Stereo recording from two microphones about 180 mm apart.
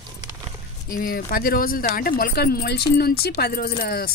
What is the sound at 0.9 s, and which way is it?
Speech, 55° left (ahead or behind).